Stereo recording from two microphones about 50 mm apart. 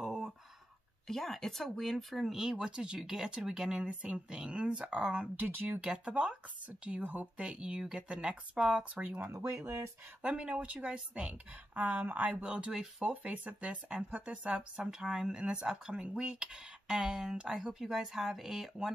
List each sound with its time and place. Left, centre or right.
0.0 s a sound: centre
1.0 s speech: centre
2.5 s speech: centre
5.4 s speech: right
5.8 s speech: right
9.3 s speech: right
10.2 s speech: right